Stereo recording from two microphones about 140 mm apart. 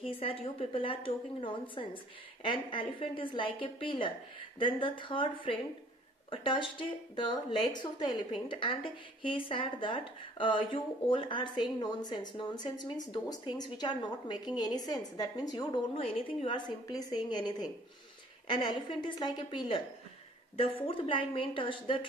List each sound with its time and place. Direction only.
0.0 s a woman's voice: 40° left (ahead or behind)
15.9 s a woman's voice: 40° left (ahead or behind)